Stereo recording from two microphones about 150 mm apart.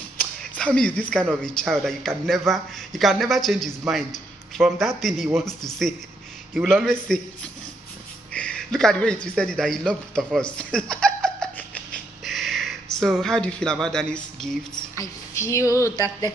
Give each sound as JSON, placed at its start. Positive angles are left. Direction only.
{"t": 0.2, "sound": "a sound", "side_deg": 5}
{"t": 1.4, "sound": "a man's voice", "side_deg": 5}
{"t": 6.6, "sound": "a man's voice", "side_deg": 0}
{"t": 8.3, "sound": "speech", "side_deg": 5}
{"t": 10.6, "sound": "laughter", "side_deg": 5}
{"t": 15.0, "sound": "a woman's voice", "side_deg": 20}